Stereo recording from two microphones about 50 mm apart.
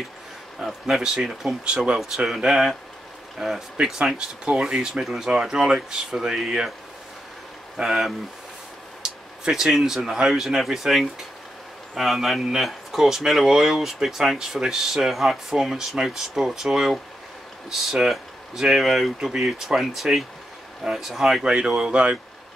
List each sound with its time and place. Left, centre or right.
0.6 s speech: centre
2.2 s speech: centre
7.7 s speech: centre